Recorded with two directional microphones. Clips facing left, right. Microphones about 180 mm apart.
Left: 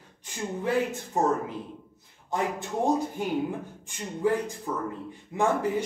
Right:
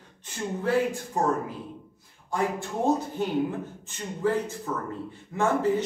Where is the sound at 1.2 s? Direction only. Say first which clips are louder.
Left 2 dB; 20° left (ahead or behind).